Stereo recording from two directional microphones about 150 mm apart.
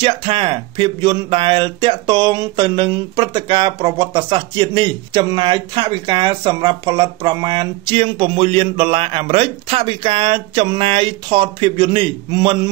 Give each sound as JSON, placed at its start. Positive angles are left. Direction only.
{"t": 0.0, "sound": "speech", "side_deg": -35}